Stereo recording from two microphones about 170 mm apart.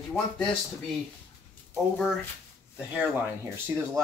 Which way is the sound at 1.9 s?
Centre (ahead or behind).